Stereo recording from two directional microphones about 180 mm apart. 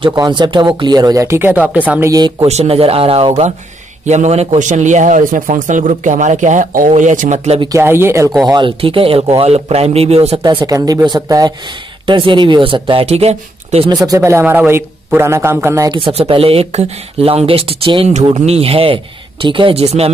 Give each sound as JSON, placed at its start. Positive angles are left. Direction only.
{"t": 0.0, "sound": "a man's voice", "side_deg": -25}
{"t": 2.4, "sound": "a man's voice", "side_deg": -35}
{"t": 7.6, "sound": "a man's voice", "side_deg": -15}
{"t": 8.5, "sound": "speech", "side_deg": -25}
{"t": 10.4, "sound": "speech", "side_deg": -25}
{"t": 14.0, "sound": "a man's voice", "side_deg": -15}
{"t": 15.9, "sound": "speech", "side_deg": -30}